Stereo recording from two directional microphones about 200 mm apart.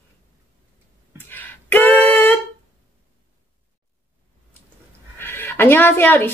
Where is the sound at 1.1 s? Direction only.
10° left (ahead or behind).